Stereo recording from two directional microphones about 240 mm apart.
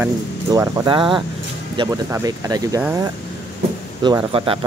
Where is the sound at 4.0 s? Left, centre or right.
Centre.